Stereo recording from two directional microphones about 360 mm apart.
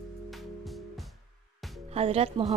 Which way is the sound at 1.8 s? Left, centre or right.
Centre.